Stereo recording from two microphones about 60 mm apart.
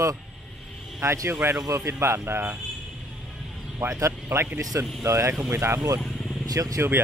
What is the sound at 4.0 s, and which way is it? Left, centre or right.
Speech, right.